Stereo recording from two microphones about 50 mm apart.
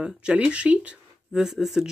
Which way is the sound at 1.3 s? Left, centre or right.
Centre.